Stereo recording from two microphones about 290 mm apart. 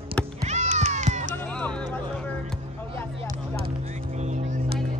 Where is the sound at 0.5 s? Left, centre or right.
Right.